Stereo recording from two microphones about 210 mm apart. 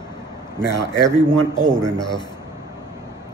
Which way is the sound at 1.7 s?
5° left (ahead or behind).